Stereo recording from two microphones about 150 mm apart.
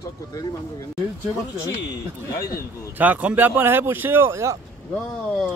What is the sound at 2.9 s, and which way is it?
Speech, 10° right (ahead or behind).